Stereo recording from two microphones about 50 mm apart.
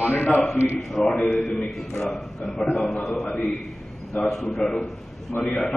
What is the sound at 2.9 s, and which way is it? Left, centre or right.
Speech, centre.